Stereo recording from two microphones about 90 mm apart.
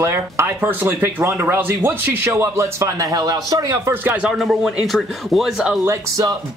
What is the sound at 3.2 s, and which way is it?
Speech, 50° right (ahead or behind).